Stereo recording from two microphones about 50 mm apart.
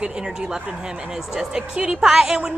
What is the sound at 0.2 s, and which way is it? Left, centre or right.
A woman's voice, centre.